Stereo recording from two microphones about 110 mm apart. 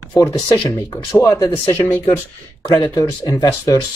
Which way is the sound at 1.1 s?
25° left (ahead or behind).